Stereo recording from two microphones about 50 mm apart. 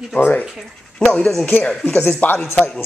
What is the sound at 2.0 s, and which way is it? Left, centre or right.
Speech, left.